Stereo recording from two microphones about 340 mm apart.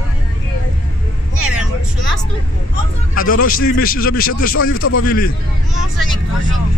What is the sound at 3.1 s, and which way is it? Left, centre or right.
A man's voice, left.